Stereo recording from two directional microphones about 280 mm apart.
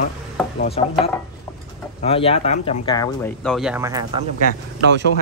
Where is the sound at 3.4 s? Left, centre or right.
Centre.